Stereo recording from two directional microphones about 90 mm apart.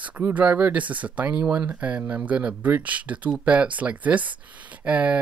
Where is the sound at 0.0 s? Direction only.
15° right (ahead or behind).